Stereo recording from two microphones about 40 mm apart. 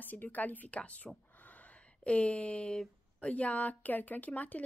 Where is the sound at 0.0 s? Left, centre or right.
Left.